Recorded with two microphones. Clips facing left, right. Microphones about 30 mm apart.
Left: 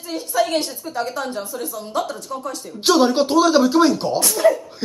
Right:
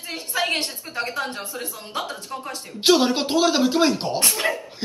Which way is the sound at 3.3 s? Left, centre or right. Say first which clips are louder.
Left 3 dB; right.